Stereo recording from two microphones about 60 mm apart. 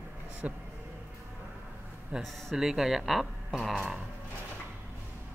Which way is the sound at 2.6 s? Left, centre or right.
Centre.